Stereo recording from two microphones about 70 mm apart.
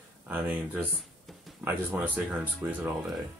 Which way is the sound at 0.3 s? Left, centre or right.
Right.